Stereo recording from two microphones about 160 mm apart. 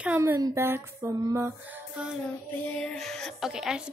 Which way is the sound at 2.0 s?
5° right (ahead or behind).